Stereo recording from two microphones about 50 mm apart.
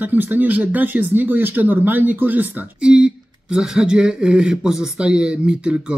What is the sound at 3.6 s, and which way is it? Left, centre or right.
Speech, centre.